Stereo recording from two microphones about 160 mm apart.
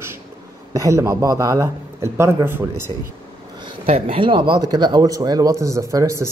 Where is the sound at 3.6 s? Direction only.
35° right (ahead or behind).